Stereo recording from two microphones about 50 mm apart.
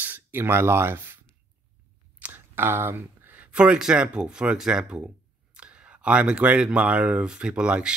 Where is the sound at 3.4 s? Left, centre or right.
Right.